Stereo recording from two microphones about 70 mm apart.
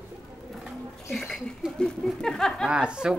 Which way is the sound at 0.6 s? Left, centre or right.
Centre.